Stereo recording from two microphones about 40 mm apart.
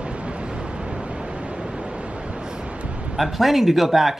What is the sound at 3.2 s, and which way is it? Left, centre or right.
Speech, centre.